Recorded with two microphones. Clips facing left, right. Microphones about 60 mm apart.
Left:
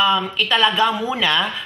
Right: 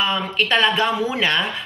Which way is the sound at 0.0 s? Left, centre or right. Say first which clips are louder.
Left 3 dB; right.